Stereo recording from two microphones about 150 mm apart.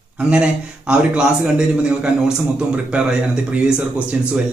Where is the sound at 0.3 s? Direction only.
5° right (ahead or behind).